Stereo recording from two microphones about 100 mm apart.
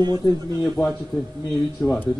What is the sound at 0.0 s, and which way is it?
Speech, 40° right (ahead or behind).